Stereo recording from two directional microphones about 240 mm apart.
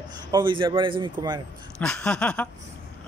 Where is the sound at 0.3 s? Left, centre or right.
Centre.